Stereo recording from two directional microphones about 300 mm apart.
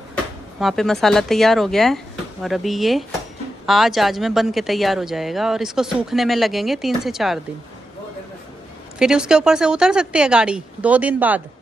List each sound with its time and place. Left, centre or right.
0.6 s speech: centre
8.9 s speech: centre